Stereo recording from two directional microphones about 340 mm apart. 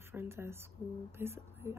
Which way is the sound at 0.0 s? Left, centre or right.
Centre.